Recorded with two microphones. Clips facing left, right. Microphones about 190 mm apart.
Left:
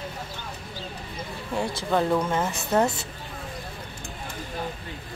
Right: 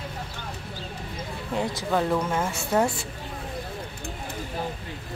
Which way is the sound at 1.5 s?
20° right (ahead or behind).